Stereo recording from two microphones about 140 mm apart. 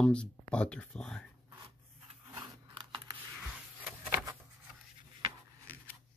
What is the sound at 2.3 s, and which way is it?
Scissors, 35° right (ahead or behind).